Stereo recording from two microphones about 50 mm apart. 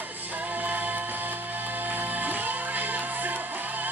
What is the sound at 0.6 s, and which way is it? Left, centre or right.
Music, right.